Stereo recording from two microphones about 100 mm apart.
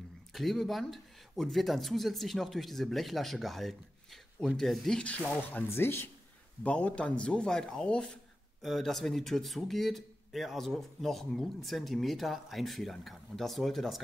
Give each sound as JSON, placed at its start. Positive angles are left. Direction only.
{"t": 0.3, "sound": "speech", "side_deg": 0}
{"t": 6.6, "sound": "speech", "side_deg": 10}